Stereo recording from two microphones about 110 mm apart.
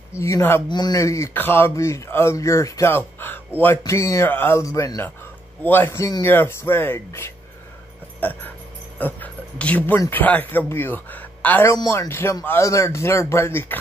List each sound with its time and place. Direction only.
0.2 s speech: 25° left (ahead or behind)
0.7 s speech: 40° left (ahead or behind)
0.9 s speech: 30° left (ahead or behind)
3.8 s speech: 30° left (ahead or behind)
8.2 s music: 15° left (ahead or behind)
8.9 s speech: 15° left (ahead or behind)
11.7 s speech: 30° left (ahead or behind)
12.1 s speech: 20° left (ahead or behind)